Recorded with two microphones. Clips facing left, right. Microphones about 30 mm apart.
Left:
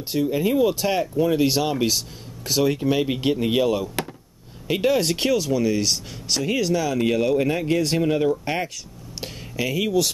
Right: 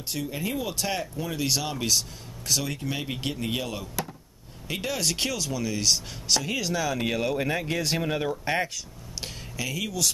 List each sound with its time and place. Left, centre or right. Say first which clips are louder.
0.1 s speech: left 10 dB; left
4.0 s a sound: left 4 dB; left
4.6 s speech: left 9 dB; left; by 8.3 s centre
9.6 s speech: left 8 dB; left